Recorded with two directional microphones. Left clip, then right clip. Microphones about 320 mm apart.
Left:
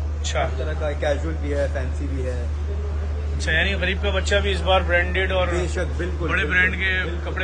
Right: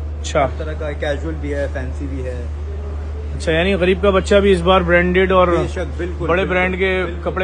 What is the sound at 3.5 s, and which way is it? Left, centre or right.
A man's voice, centre.